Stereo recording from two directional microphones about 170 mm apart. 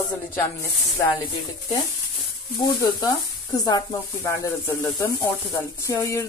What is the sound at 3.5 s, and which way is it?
Speech, 20° left (ahead or behind).